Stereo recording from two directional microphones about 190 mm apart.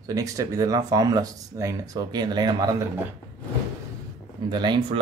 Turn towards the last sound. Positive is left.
turn(degrees=-25)  # may be behind; listen again after turning